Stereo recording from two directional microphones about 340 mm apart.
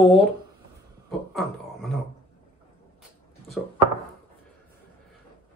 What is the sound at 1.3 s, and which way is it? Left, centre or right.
Speech, centre.